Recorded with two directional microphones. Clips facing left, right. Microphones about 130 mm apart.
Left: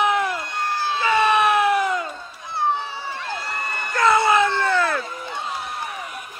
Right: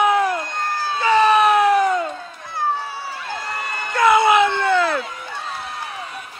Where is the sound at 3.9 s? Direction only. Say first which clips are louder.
Right 3 dB; 20° right (ahead or behind).